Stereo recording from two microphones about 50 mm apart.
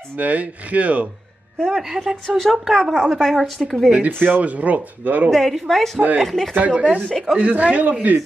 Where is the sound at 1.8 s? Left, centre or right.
Centre.